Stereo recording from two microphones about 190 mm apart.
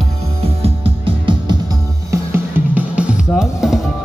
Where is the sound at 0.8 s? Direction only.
25° right (ahead or behind).